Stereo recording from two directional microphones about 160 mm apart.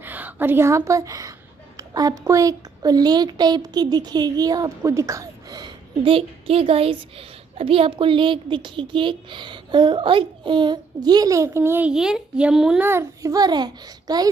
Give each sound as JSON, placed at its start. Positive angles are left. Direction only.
{"t": 0.0, "sound": "a woman's voice", "side_deg": -10}